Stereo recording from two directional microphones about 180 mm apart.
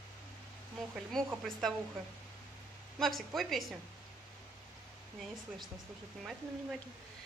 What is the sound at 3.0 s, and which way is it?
Speech, centre (ahead or behind).